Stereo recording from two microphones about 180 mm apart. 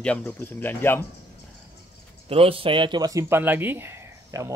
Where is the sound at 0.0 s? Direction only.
5° left (ahead or behind).